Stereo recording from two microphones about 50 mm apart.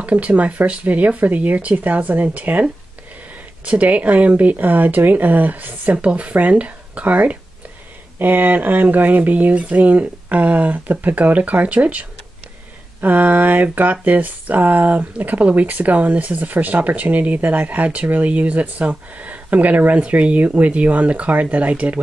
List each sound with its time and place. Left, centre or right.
0.0 s speech: right
3.6 s speech: right
8.2 s speech: right